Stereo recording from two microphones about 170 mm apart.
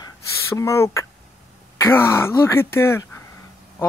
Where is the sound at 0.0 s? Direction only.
20° left (ahead or behind).